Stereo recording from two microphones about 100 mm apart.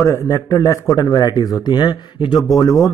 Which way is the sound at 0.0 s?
30° left (ahead or behind).